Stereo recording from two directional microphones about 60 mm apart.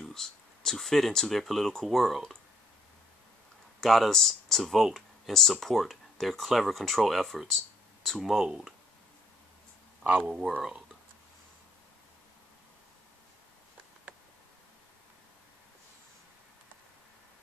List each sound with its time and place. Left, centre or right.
0.0 s speech: centre
3.8 s speech: centre
10.0 s speech: centre